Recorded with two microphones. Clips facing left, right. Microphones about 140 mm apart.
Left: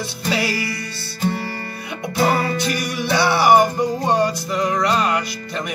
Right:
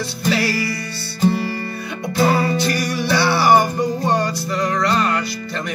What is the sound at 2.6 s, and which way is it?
Music, 15° left (ahead or behind).